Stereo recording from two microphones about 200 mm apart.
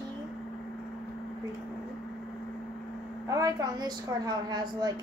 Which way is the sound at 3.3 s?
15° right (ahead or behind).